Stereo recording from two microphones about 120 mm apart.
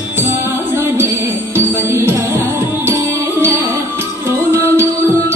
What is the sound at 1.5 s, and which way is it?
Music, 20° right (ahead or behind).